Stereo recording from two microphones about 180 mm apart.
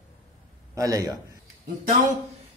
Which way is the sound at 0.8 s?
20° right (ahead or behind).